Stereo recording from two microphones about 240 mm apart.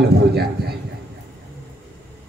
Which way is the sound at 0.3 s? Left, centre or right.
Right.